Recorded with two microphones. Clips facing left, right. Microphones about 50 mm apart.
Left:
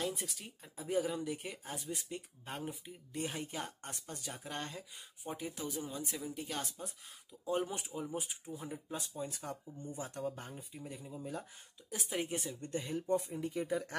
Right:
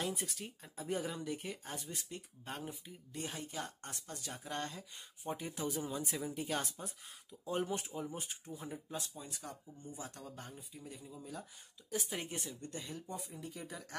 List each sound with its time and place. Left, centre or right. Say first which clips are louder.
0.0 s speech: left 1 dB; centre
5.2 s speech: right 2 dB; centre
7.4 s speech: left 1 dB; centre
8.8 s speech: left 4 dB; left
11.9 s speech: left 2 dB; centre
12.3 s speech: left 4 dB; centre
12.6 s speech: left 8 dB; left